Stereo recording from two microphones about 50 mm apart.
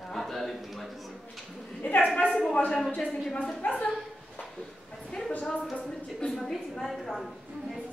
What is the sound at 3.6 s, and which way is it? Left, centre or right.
Speech, left.